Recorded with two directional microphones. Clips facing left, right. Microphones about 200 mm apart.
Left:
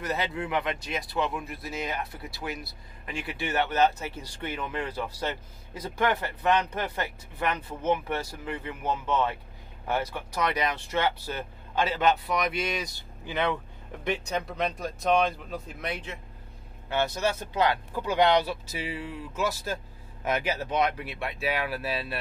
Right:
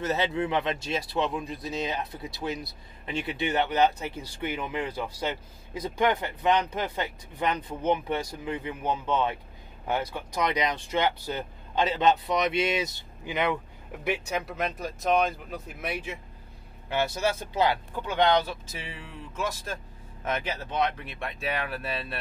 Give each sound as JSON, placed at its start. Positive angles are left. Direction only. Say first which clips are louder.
{"t": 0.0, "sound": "speech", "louder": "right 4 dB", "side_deg": -25}
{"t": 17.9, "sound": "speech", "louder": "left 2 dB", "side_deg": 10}